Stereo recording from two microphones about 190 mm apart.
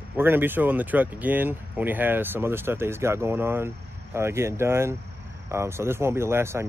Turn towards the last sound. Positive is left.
turn(degrees=-15)  # may be behind; listen again after turning